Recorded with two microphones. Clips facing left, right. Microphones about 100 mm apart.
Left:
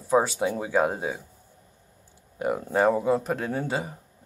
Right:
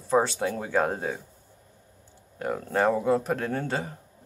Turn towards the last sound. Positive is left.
turn(degrees=10)  # may be behind; listen again after turning